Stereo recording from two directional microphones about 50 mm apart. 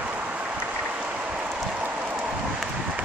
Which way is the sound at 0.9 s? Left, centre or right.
Right.